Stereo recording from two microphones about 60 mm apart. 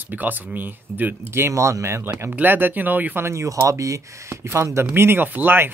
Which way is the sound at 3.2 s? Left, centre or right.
Right.